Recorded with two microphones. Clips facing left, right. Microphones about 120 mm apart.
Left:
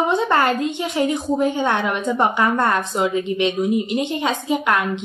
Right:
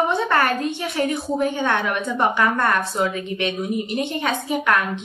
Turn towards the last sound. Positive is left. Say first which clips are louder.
# left 1 dB
turn(degrees=20)  # may be behind; listen again after turning